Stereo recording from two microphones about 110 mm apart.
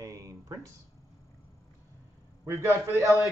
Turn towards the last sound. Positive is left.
turn(degrees=-25)  # may be behind; listen again after turning